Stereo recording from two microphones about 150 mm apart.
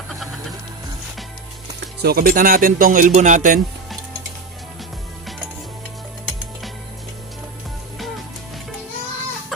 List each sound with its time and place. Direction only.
2.0 s speech: 85° right; by 3.6 s 60° right (ahead or behind)